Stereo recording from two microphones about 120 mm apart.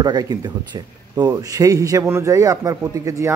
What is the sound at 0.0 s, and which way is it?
Speech, 35° right (ahead or behind).